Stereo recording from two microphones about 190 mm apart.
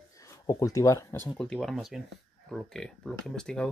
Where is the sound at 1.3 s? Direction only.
5° left (ahead or behind).